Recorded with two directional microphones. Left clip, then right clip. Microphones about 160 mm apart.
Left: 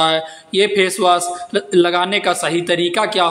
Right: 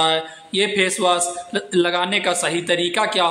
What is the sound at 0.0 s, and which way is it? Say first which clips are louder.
A man's voice: left 3 dB; 15° left (ahead or behind).